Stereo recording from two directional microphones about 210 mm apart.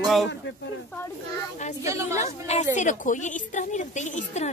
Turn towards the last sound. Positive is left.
turn(degrees=35)  # may be behind; listen again after turning